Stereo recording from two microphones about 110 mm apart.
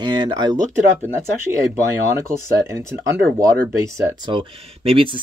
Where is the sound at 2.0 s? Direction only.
25° right (ahead or behind).